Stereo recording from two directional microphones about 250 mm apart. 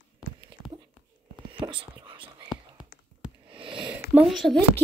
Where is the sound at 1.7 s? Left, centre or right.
Centre.